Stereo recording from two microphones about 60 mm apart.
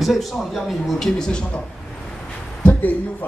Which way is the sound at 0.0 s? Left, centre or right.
Centre.